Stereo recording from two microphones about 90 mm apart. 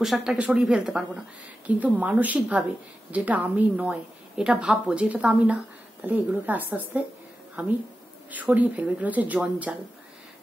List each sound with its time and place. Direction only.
0.0 s a woman's voice: 5° right (ahead or behind)